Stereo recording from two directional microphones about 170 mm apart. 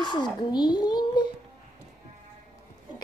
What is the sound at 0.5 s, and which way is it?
Speech, 25° left (ahead or behind).